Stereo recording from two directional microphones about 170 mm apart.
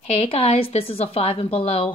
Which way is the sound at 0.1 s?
35° left (ahead or behind).